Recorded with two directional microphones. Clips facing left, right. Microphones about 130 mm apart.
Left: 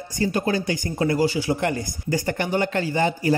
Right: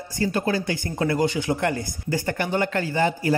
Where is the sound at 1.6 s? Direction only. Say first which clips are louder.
Even; 20° left (ahead or behind).